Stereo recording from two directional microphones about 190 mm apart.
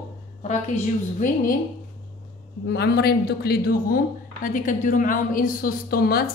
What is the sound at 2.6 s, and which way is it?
Speech, 60° left (ahead or behind).